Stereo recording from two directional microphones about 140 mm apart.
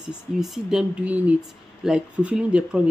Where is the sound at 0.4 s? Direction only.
5° right (ahead or behind).